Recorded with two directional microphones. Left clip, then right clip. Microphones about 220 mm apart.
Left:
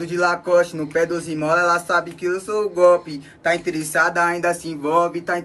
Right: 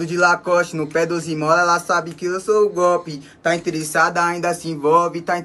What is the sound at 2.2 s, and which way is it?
Speech, 45° right (ahead or behind).